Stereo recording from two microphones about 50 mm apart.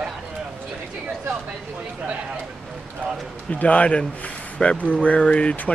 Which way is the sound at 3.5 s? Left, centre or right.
Left.